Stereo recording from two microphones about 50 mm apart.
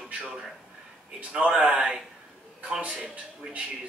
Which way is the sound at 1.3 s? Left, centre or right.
Centre.